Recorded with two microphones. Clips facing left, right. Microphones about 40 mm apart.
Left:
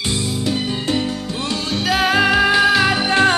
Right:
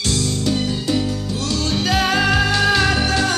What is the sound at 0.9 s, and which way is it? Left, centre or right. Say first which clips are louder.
Music: even; left.